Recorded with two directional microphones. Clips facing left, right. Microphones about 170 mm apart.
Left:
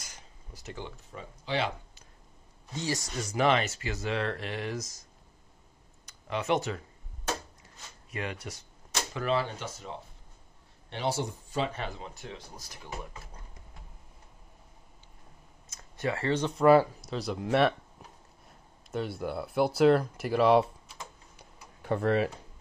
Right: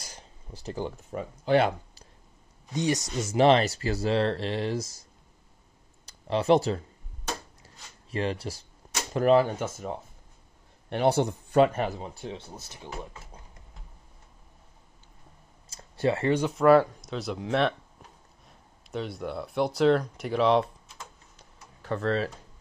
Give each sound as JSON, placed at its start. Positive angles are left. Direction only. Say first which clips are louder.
{"t": 0.0, "sound": "a sound", "louder": "right 4 dB", "side_deg": -30}
{"t": 1.1, "sound": "speech", "louder": "right 10 dB", "side_deg": -55}
{"t": 2.7, "sound": "speech", "louder": "right 6 dB", "side_deg": -20}
{"t": 6.0, "sound": "speech", "louder": "right 7 dB", "side_deg": -35}
{"t": 7.6, "sound": "a sound", "louder": "even", "side_deg": -30}
{"t": 9.1, "sound": "speech", "louder": "right 9 dB", "side_deg": -45}
{"t": 15.7, "sound": "a sound", "louder": "right 6 dB", "side_deg": -30}
{"t": 16.3, "sound": "speech", "louder": "right 1 dB", "side_deg": -10}
{"t": 16.5, "sound": "speech", "louder": "right 1 dB", "side_deg": 0}
{"t": 18.9, "sound": "speech", "louder": "even", "side_deg": 0}
{"t": 21.0, "sound": "typing", "louder": "left 1 dB", "side_deg": 10}